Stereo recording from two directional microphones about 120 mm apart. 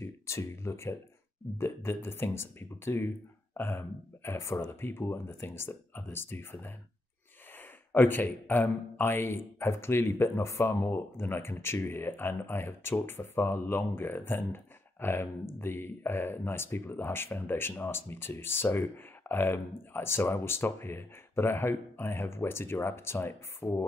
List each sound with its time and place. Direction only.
0.0 s speech: 25° left (ahead or behind)